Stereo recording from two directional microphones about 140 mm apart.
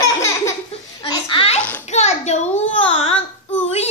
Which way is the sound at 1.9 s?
55° left (ahead or behind).